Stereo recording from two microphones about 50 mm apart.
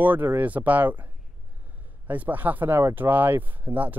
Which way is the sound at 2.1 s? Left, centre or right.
Right.